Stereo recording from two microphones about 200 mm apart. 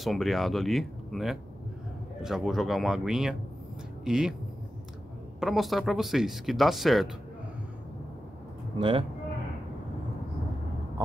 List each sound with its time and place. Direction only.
0.0 s speech: centre (ahead or behind)
5.4 s speech: centre (ahead or behind)
8.7 s speech: 25° right (ahead or behind)